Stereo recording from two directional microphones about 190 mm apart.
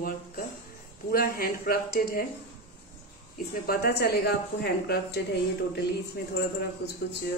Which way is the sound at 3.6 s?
55° left (ahead or behind).